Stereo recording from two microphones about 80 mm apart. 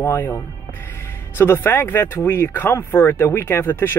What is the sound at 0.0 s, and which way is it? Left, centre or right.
Speech, left.